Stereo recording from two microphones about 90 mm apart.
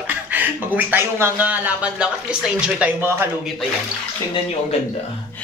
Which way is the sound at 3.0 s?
25° right (ahead or behind).